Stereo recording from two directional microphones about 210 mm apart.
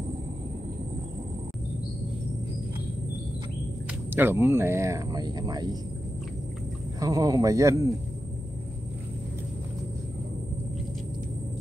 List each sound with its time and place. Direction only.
4.1 s speech: 10° right (ahead or behind)
7.0 s speech: 15° right (ahead or behind)